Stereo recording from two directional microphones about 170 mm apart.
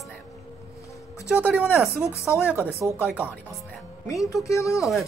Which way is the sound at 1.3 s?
10° right (ahead or behind).